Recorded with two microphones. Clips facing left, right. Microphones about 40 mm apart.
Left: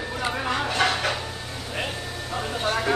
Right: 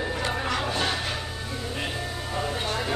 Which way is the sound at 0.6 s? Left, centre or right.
Left.